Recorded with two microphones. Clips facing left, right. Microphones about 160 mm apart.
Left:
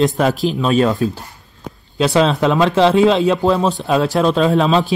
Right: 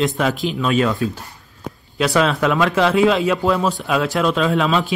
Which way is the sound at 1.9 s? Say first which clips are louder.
Left 3 dB; 25° left (ahead or behind).